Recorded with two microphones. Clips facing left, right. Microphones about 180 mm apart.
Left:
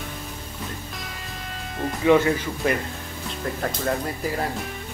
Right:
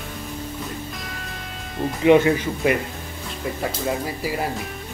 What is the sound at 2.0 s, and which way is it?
Speech, 20° right (ahead or behind).